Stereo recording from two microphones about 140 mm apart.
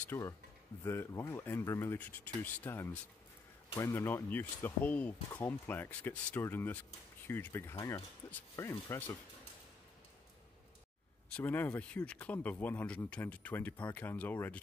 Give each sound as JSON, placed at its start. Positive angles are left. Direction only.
{"t": 0.0, "sound": "speech", "side_deg": 15}
{"t": 11.3, "sound": "speech", "side_deg": 15}